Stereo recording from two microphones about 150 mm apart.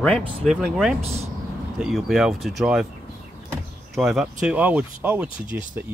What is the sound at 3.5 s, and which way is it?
Power windows, centre (ahead or behind).